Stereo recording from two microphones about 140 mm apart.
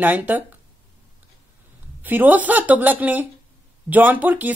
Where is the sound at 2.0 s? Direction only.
15° right (ahead or behind).